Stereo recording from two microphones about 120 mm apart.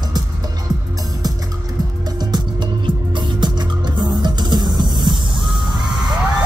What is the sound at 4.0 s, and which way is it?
Music, 35° right (ahead or behind).